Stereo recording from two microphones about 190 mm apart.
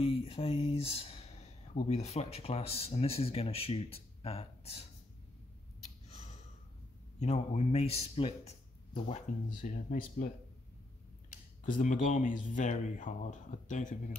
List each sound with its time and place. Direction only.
0.0 s speech: 30° left (ahead or behind)
7.2 s speech: 35° left (ahead or behind)
11.6 s speech: 45° left (ahead or behind)